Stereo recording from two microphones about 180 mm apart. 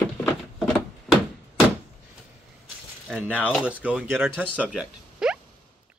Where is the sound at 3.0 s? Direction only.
10° right (ahead or behind).